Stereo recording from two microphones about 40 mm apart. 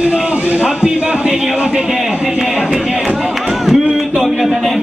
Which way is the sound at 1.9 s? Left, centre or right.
Centre.